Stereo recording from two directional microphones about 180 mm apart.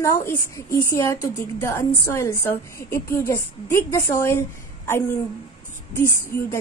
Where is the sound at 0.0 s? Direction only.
15° left (ahead or behind).